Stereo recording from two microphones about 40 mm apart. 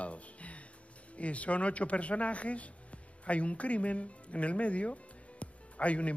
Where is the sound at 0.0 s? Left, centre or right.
Left.